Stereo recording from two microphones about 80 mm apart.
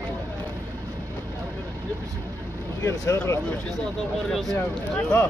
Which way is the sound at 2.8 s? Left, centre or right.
Left.